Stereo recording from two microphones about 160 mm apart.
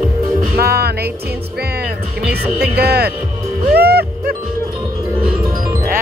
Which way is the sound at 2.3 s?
80° right.